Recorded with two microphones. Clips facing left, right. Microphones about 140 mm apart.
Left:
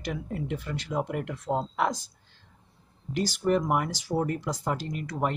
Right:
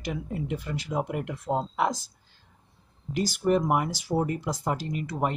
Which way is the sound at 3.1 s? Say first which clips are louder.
Right 1 dB; 5° right (ahead or behind).